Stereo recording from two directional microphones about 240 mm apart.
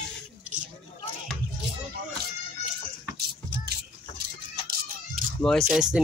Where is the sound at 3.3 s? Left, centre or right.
Right.